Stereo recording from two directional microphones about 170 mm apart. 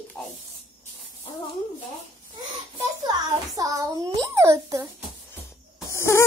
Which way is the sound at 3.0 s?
20° right (ahead or behind).